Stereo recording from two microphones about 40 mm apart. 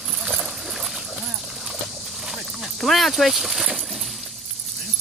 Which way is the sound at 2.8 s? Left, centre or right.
Centre.